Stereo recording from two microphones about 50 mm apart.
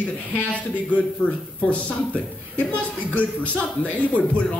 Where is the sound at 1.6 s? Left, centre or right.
Left.